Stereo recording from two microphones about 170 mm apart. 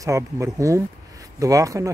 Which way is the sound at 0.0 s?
20° right (ahead or behind).